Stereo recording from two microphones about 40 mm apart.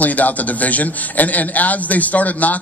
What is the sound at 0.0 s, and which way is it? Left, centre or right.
A man's voice, left.